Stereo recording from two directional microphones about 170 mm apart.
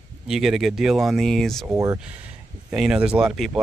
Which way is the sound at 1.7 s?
20° right (ahead or behind).